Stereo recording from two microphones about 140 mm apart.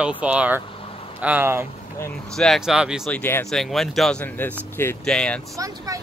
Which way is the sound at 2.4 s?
Centre (ahead or behind).